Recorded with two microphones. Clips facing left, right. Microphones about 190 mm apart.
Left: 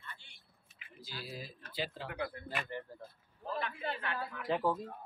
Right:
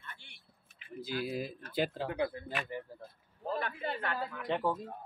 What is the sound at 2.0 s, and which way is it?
Speech, 25° right (ahead or behind).